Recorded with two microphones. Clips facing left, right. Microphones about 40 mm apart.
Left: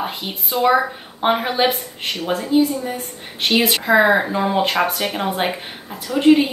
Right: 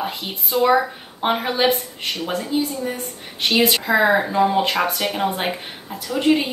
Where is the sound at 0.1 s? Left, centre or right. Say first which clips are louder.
Right 1 dB; centre.